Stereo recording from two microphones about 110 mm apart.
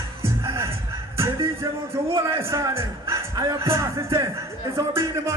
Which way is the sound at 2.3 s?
25° right (ahead or behind).